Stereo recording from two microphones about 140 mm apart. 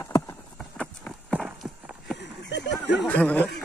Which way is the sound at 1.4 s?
5° right (ahead or behind).